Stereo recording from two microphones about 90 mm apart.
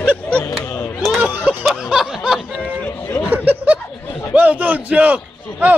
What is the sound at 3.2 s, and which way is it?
Snicker, 20° right (ahead or behind).